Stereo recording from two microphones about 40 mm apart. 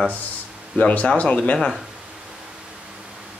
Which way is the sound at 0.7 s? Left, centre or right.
Left.